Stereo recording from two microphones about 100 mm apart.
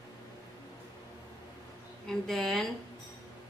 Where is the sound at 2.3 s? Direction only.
5° left (ahead or behind).